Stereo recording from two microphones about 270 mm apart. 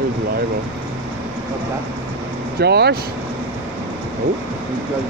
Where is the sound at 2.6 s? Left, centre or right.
Right.